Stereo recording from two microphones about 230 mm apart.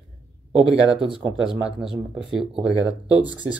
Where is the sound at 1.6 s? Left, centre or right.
Centre.